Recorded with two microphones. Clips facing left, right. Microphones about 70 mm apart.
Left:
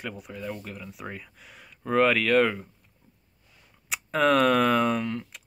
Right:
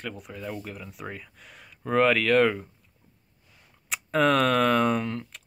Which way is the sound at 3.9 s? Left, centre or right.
Centre.